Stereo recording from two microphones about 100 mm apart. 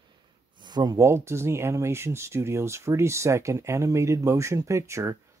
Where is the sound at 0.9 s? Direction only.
30° right (ahead or behind).